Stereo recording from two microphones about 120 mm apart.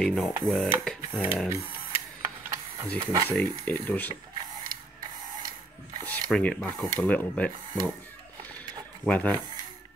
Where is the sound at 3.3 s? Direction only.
15° left (ahead or behind).